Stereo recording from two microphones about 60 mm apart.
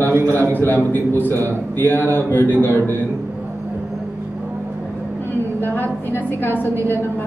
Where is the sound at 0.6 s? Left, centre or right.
Left.